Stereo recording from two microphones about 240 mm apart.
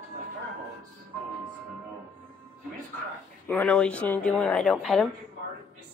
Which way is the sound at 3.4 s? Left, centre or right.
Centre.